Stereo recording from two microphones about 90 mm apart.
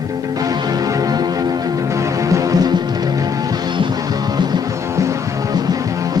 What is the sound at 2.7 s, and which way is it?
Music, 50° right (ahead or behind).